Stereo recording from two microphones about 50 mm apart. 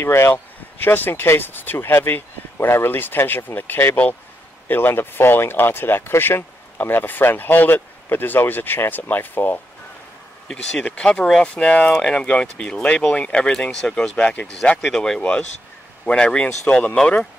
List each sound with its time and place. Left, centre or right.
0.0 s speech: left
0.3 s speech: left
10.8 s speech: left
14.1 s speech: left
14.5 s speech: centre